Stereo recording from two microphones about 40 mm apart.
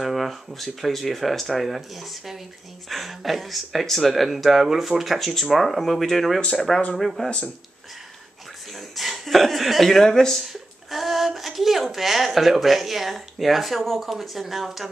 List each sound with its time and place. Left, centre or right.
0.0 s speech: centre
7.2 s speech: left
8.7 s speech: centre
10.4 s a woman's voice: centre